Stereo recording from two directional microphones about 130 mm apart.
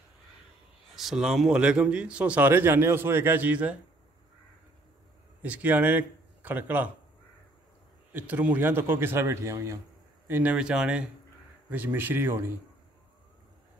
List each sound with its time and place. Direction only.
0.9 s a man's voice: 5° right (ahead or behind)
5.4 s a man's voice: 10° right (ahead or behind)
8.1 s a man's voice: 15° right (ahead or behind)